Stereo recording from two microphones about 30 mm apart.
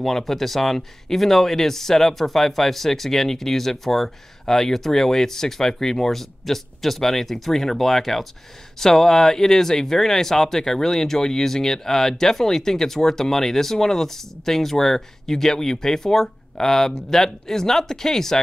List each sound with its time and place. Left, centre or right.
0.0 s speech: centre